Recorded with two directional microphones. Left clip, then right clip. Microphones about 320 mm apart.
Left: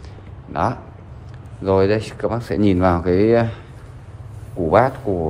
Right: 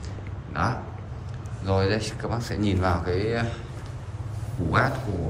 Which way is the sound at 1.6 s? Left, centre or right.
Left.